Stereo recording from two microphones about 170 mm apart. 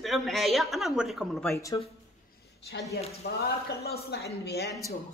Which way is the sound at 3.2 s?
75° left (ahead or behind).